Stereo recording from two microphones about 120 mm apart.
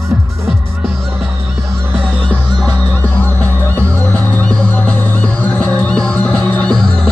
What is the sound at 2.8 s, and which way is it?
Music, 15° left (ahead or behind).